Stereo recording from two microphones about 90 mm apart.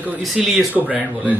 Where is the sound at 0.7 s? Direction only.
20° right (ahead or behind).